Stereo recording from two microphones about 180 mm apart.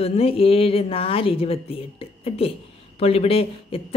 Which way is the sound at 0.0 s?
30° left (ahead or behind).